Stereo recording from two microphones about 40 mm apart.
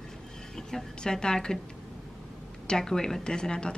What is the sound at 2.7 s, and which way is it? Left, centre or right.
A woman's voice, centre.